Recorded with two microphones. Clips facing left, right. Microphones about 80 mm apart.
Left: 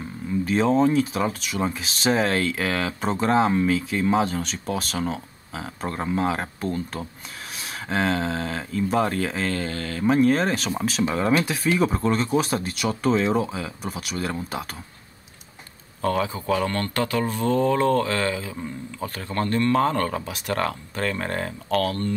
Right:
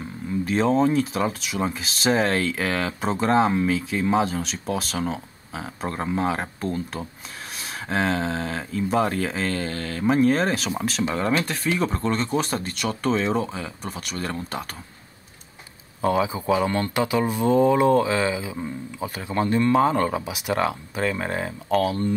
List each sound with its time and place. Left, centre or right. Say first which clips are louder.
0.5 s speech: even; centre
16.0 s speech: right 2 dB; centre